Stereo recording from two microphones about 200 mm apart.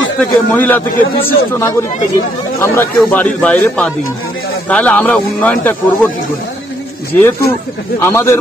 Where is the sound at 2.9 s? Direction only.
5° left (ahead or behind).